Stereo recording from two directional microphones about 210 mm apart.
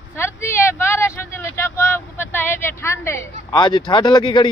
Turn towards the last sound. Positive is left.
turn(degrees=20)  # may be behind; listen again after turning